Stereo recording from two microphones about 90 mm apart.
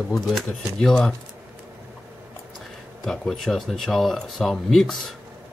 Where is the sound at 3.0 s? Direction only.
5° left (ahead or behind).